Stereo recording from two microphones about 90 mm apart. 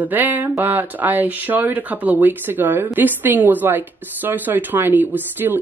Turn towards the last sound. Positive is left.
turn(degrees=-20)  # may be behind; listen again after turning